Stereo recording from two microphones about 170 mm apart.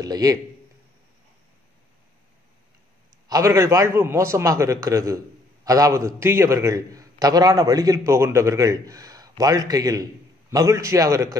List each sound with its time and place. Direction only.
0.0 s a man's voice: 20° right (ahead or behind)
3.3 s a man's voice: 20° right (ahead or behind)